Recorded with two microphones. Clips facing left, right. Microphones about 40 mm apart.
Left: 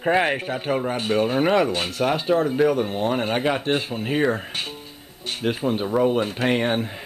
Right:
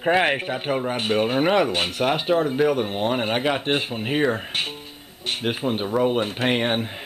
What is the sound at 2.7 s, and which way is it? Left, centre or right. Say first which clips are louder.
A man's voice: even; right.